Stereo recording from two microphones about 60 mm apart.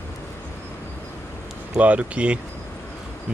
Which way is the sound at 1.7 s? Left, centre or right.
Right.